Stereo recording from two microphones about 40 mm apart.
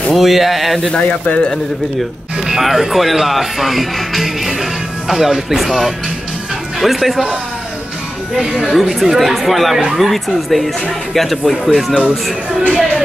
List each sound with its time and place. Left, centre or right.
0.1 s speech: centre
0.9 s speech: left
2.6 s speech: centre
8.4 s speech: centre
11.7 s speech: centre